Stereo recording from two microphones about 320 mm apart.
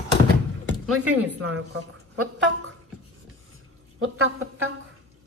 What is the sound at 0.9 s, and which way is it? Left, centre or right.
Speech, right.